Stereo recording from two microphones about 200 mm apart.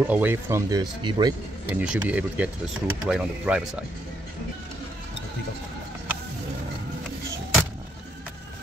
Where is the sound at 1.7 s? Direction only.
10° right (ahead or behind).